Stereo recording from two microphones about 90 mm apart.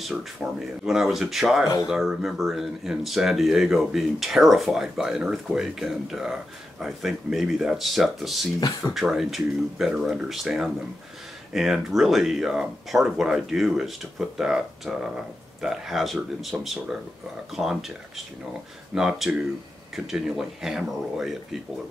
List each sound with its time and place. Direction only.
0.0 s speech: 5° right (ahead or behind)
8.5 s speech: 40° left (ahead or behind)
8.9 s speech: centre (ahead or behind)